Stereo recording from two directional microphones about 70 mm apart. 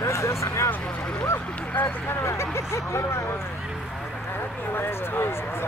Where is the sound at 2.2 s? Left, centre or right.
Left.